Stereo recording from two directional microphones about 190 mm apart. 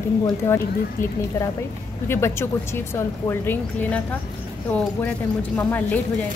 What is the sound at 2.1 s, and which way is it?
A woman's voice, 15° left (ahead or behind).